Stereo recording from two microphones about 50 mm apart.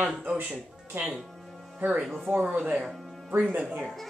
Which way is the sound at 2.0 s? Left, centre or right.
Centre.